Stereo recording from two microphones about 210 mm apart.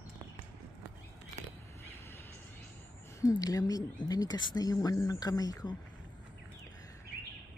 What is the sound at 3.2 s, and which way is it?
A woman's voice, 15° left (ahead or behind).